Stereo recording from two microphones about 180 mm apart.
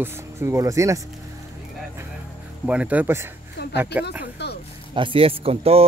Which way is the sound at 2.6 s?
5° right (ahead or behind).